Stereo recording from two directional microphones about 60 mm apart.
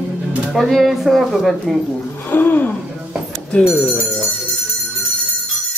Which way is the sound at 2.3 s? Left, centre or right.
Left.